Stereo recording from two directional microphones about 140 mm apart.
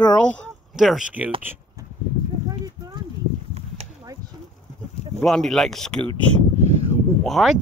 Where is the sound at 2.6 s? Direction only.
30° right (ahead or behind).